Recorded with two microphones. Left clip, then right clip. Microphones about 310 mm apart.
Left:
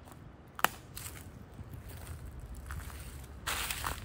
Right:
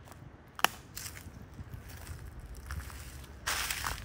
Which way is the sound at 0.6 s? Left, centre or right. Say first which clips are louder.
Right 1 dB; centre.